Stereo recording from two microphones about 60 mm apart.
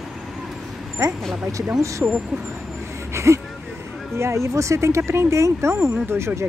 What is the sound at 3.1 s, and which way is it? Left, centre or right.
Speech, right.